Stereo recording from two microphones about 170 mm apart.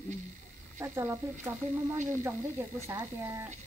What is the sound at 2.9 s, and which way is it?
Speech, 15° right (ahead or behind).